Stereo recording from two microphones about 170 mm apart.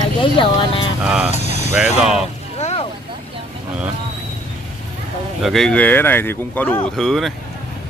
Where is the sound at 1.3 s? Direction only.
40° left (ahead or behind).